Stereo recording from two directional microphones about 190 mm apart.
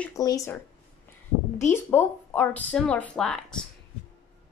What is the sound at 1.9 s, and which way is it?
Speech, 10° left (ahead or behind).